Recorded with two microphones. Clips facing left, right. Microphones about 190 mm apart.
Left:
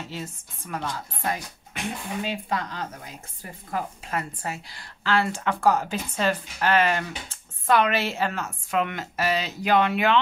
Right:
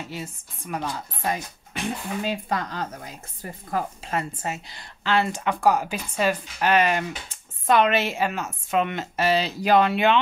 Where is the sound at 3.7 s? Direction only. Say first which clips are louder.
Right 2 dB; 30° right (ahead or behind).